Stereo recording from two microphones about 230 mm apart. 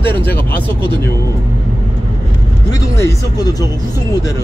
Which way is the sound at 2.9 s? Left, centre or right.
Centre.